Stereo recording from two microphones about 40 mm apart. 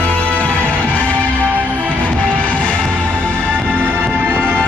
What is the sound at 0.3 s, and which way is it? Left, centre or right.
Music, left.